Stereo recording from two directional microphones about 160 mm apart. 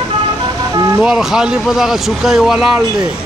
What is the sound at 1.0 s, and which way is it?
Speech, 5° right (ahead or behind).